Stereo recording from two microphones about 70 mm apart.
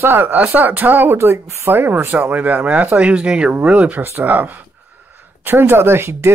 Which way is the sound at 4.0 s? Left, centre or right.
Right.